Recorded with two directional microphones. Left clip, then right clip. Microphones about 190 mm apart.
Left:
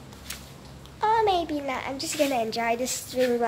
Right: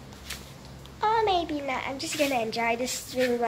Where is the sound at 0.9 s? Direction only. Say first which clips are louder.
Left 2 dB; 20° left (ahead or behind).